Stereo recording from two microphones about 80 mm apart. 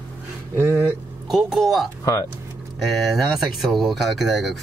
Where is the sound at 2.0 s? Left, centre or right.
Left.